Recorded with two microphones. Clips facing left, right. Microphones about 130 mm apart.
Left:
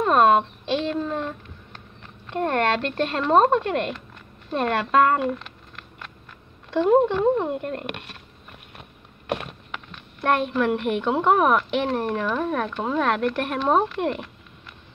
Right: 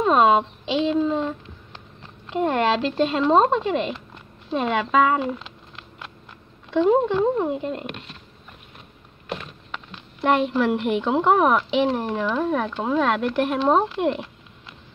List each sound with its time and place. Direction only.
0.0 s a child's voice: centre (ahead or behind)
2.2 s a woman's voice: 10° right (ahead or behind)
6.7 s a woman's voice: centre (ahead or behind)
9.3 s a sound: 60° left (ahead or behind)
10.2 s a woman's voice: 5° right (ahead or behind)